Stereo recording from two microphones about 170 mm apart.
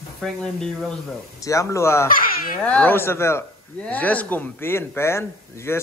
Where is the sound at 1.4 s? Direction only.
20° left (ahead or behind).